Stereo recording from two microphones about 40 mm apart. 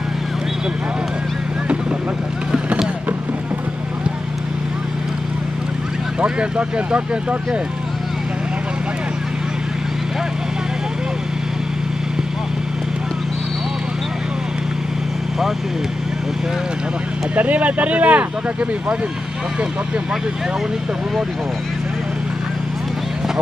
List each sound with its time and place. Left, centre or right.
6.2 s speech: right
17.4 s speech: right